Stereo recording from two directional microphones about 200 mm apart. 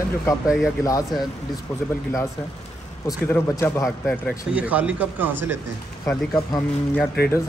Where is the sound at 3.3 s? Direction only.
10° left (ahead or behind).